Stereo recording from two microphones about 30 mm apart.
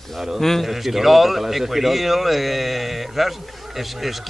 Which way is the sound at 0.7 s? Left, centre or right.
Centre.